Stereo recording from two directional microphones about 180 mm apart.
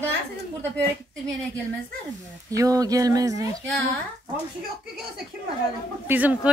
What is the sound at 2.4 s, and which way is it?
Speech, 20° right (ahead or behind).